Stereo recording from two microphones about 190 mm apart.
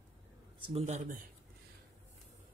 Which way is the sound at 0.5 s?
35° right (ahead or behind).